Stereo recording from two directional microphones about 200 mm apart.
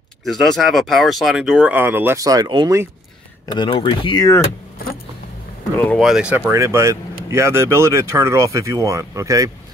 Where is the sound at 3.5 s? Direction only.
25° left (ahead or behind).